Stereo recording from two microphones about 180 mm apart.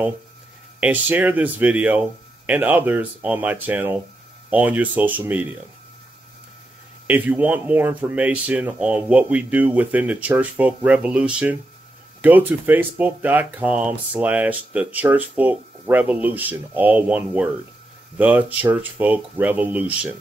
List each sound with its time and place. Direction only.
0.7 s speech: 10° right (ahead or behind)
7.1 s speech: 10° right (ahead or behind)